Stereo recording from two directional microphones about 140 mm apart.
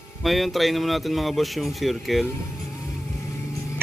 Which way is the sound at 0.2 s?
Centre (ahead or behind).